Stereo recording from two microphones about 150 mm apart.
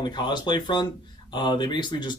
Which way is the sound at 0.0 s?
30° left (ahead or behind).